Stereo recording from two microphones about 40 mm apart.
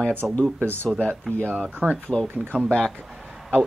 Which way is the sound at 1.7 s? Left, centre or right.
Right.